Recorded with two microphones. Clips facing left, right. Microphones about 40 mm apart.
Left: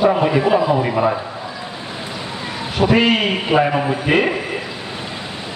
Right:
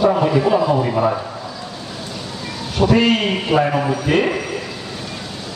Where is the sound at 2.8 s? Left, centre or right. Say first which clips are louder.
Even; left.